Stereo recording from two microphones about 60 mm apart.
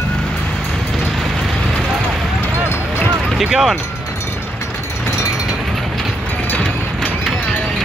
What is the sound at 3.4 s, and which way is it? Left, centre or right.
Speech, centre.